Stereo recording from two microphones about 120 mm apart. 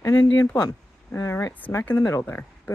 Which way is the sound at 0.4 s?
25° left (ahead or behind).